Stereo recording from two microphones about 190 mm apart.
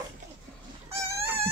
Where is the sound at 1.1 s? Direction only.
15° right (ahead or behind).